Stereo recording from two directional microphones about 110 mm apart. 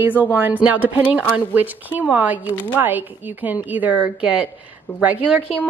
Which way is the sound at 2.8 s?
15° right (ahead or behind).